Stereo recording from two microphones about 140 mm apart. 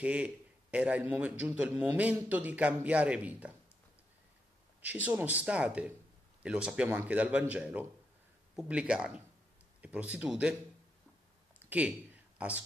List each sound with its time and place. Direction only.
0.0 s a man's voice: 10° right (ahead or behind)
5.0 s a man's voice: 10° right (ahead or behind)
12.4 s speech: 10° right (ahead or behind)